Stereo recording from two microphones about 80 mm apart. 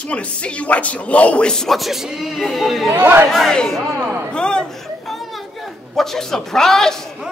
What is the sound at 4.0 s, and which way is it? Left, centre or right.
Speech, right.